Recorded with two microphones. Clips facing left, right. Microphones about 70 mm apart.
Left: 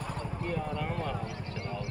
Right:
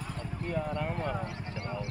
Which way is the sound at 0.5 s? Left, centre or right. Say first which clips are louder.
Right 3 dB; centre.